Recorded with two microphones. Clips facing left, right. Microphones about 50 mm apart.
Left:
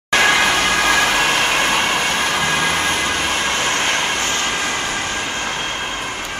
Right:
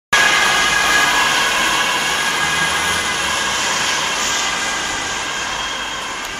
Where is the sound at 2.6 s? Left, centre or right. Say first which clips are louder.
Even; centre.